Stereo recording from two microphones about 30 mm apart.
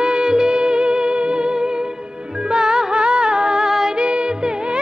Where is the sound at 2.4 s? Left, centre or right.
Right.